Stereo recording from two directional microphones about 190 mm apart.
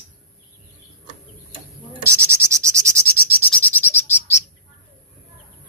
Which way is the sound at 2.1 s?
15° right (ahead or behind).